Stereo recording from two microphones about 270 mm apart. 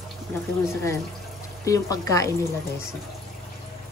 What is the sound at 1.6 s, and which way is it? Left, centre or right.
Speech, centre.